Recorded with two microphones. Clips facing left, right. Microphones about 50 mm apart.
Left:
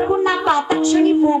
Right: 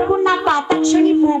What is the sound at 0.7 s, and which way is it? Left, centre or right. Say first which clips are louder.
Speech: right 2 dB; centre.